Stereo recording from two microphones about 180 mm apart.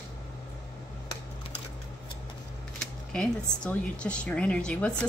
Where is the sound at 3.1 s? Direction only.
5° left (ahead or behind).